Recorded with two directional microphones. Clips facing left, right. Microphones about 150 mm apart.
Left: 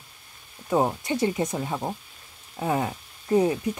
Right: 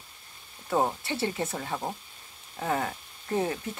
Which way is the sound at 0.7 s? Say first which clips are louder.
Left 4 dB; 15° left (ahead or behind).